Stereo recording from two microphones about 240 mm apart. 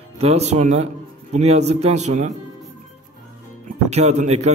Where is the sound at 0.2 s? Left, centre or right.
Right.